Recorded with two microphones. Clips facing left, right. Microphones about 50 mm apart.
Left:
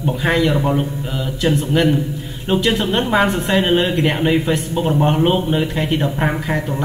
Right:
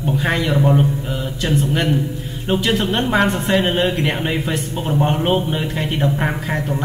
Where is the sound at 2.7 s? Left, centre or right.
Centre.